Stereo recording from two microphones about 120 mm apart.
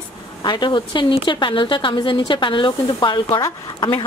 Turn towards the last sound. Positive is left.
turn(degrees=40)  # may be behind; listen again after turning